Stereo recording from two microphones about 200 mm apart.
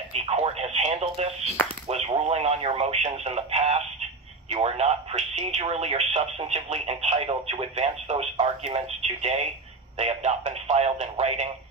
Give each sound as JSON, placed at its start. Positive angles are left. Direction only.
{"t": 0.1, "sound": "telephone", "side_deg": -30}
{"t": 1.9, "sound": "speech", "side_deg": -30}